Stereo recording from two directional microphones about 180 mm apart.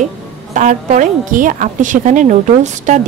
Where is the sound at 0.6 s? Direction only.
45° right (ahead or behind).